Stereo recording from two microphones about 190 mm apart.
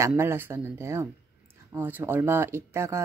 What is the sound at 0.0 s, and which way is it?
Speech, 15° right (ahead or behind).